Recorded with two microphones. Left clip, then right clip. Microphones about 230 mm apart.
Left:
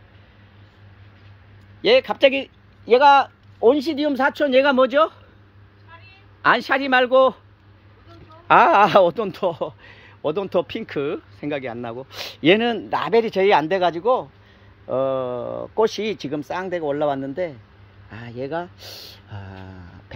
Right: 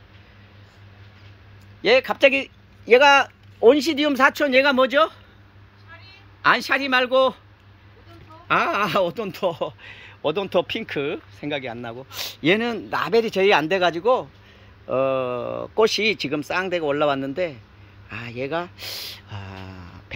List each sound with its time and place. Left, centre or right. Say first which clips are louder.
1.8 s speech: left 1 dB; centre
3.6 s speech: right 1 dB; centre
6.4 s speech: left 1 dB; centre
8.5 s speech: left 7 dB; centre
15.4 s speech: even; right
15.8 s speech: right 2 dB; centre